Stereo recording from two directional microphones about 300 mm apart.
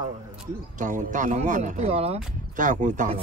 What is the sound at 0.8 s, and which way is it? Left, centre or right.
A man's voice, right.